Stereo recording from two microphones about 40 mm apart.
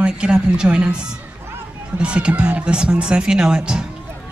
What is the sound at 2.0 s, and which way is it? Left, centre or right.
Speech, right.